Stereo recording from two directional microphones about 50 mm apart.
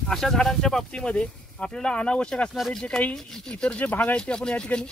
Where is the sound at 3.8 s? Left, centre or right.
Left.